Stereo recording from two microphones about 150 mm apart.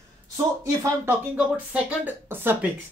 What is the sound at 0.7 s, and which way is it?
Speech, 15° right (ahead or behind).